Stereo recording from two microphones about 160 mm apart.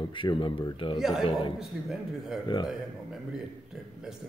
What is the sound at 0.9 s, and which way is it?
Speech, centre (ahead or behind).